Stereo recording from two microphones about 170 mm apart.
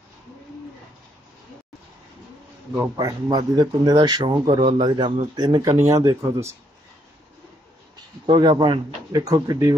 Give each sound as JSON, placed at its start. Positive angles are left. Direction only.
{"t": 2.7, "sound": "speech", "side_deg": -20}
{"t": 8.3, "sound": "speech", "side_deg": -25}